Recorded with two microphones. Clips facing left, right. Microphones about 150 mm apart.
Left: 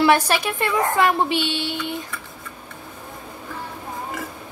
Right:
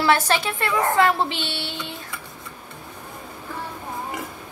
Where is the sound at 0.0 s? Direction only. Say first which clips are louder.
Left 2 dB; 15° left (ahead or behind).